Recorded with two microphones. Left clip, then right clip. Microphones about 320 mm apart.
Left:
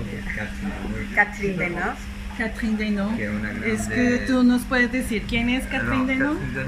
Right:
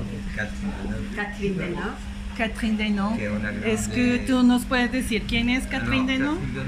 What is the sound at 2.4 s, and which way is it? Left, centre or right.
Speech, centre.